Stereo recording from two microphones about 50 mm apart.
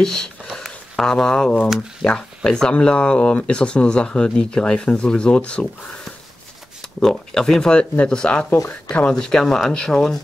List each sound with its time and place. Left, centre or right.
0.0 s speech: centre
7.0 s speech: centre
9.1 s speech: centre